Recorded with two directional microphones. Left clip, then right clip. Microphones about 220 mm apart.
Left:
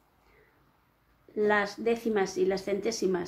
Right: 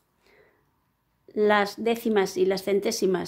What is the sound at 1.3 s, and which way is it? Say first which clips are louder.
Speech: right 5 dB; 45° right (ahead or behind).